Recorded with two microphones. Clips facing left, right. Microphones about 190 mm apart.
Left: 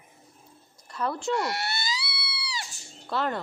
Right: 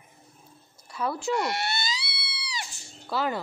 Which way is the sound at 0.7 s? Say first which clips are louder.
Even; 5° right (ahead or behind).